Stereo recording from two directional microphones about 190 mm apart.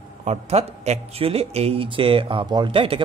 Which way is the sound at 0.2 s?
35° right (ahead or behind).